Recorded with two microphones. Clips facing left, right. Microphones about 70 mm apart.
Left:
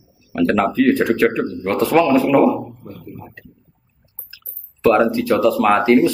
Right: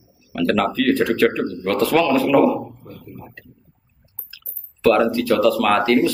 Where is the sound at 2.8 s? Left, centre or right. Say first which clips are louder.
Left 3 dB; left.